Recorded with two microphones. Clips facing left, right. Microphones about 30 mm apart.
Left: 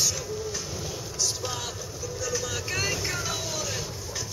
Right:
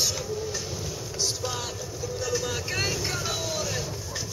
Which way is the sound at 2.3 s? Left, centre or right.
Centre.